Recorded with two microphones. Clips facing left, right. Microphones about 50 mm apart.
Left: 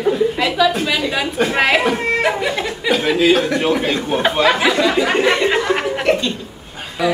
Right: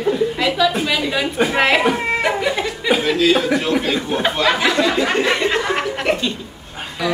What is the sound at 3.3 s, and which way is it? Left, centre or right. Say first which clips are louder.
Speech: even; centre.